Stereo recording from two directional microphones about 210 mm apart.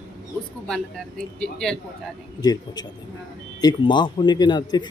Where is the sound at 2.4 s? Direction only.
20° left (ahead or behind).